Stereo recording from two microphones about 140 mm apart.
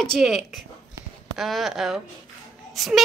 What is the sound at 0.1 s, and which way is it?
A child's voice, 5° right (ahead or behind).